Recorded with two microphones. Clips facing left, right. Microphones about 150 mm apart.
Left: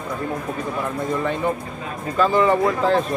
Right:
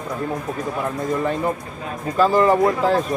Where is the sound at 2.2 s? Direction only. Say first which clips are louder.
Right 2 dB; 5° right (ahead or behind).